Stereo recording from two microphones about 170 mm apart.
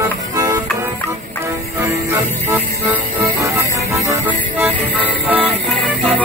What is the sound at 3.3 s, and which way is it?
Music, 15° right (ahead or behind).